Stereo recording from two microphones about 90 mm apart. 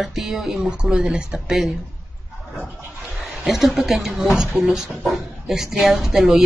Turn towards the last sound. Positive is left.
turn(degrees=-5)  # may be behind; listen again after turning